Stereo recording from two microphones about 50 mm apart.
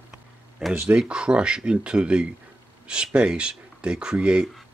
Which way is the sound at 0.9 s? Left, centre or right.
Centre.